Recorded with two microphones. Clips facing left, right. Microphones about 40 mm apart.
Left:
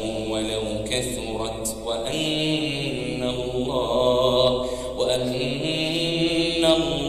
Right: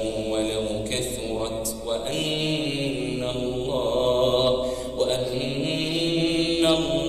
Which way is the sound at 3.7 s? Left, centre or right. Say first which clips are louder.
Left 2 dB; left.